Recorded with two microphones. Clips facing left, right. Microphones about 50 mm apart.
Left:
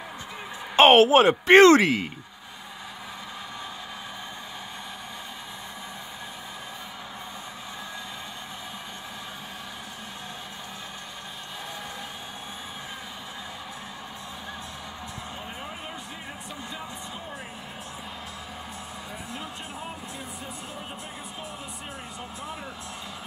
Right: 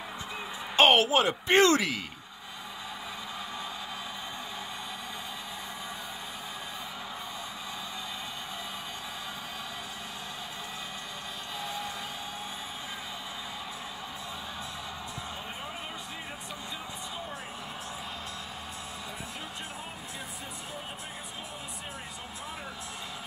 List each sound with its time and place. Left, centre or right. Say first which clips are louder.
0.7 s a woman's voice: left 7 dB; left
1.5 s speech: left 9 dB; left
1.8 s speech: left 8 dB; left